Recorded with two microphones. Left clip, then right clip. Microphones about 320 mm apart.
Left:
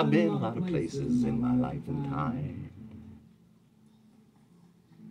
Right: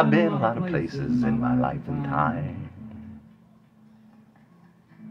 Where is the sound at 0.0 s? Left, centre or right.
Centre.